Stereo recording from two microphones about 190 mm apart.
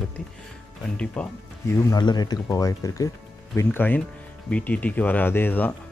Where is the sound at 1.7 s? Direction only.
20° left (ahead or behind).